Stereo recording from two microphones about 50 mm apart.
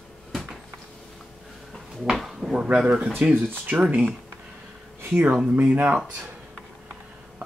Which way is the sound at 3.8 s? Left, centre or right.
Right.